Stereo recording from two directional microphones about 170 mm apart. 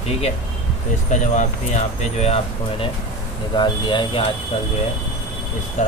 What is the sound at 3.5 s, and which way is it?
Speech, 25° left (ahead or behind).